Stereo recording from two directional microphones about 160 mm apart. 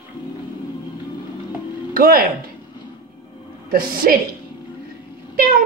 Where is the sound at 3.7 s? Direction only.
65° right (ahead or behind).